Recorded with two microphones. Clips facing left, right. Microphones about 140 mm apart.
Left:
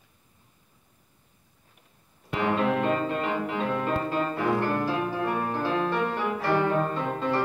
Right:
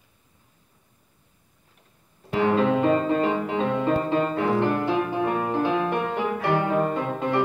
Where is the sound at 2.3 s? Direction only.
30° right (ahead or behind).